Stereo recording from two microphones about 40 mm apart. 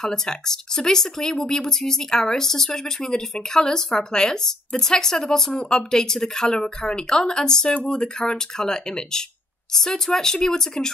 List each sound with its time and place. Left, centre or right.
0.0 s speech: centre